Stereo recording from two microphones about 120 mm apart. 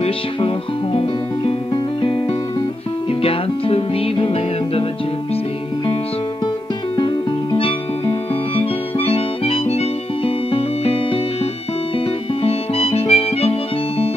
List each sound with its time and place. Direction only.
1.7 s music: 45° left (ahead or behind)
7.0 s music: 45° left (ahead or behind)
12.4 s harmonica: 55° left (ahead or behind)